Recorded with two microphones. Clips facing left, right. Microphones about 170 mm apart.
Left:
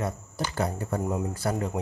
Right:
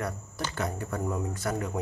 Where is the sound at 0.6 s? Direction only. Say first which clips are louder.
Left 4 dB; 35° left (ahead or behind).